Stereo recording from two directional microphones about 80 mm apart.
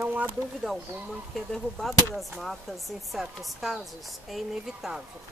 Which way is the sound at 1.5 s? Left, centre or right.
Centre.